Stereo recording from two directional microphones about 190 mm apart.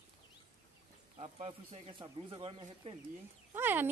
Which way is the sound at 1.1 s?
30° right (ahead or behind).